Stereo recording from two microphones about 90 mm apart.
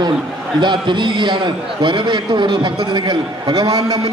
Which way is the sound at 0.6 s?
60° right (ahead or behind).